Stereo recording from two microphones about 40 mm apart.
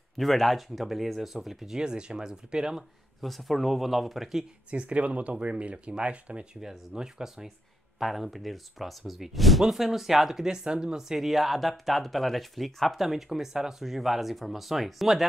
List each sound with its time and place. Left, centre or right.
0.2 s speech: centre
1.8 s speech: right
3.2 s speech: centre
4.6 s speech: right
6.6 s speech: centre
8.0 s speech: centre
10.4 s speech: centre